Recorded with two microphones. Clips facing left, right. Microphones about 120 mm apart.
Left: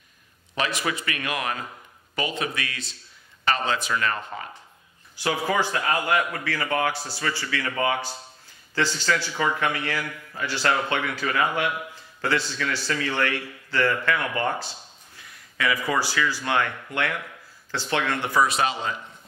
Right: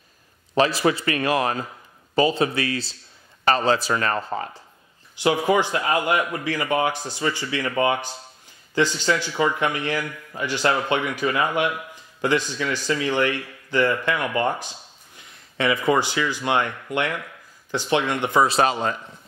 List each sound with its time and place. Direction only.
0.6 s a man's voice: 35° right (ahead or behind)
5.1 s a man's voice: 20° right (ahead or behind)
18.6 s a man's voice: 45° right (ahead or behind)